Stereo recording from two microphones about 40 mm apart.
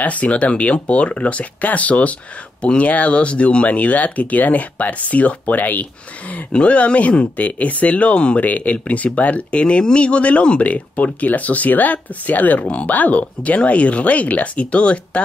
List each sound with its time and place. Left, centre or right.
0.0 s speech: left
6.5 s speech: left
8.5 s speech: left